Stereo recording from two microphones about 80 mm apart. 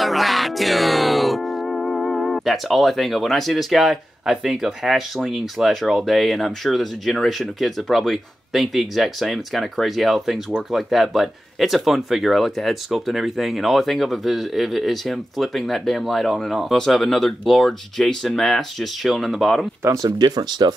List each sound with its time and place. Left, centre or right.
0.0 s music: centre
20.1 s speech: right